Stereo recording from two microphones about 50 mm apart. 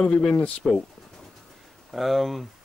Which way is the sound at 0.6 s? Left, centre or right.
Centre.